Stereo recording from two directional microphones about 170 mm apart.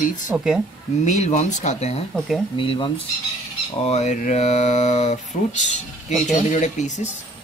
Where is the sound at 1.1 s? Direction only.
40° left (ahead or behind).